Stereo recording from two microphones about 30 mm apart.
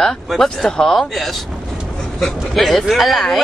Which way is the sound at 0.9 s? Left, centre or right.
Centre.